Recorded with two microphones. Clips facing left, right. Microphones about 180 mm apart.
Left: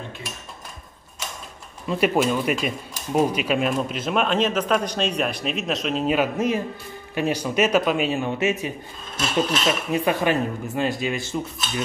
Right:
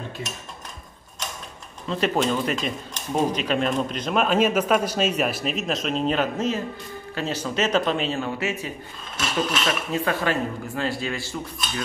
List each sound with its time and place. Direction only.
1.9 s speech: 10° left (ahead or behind)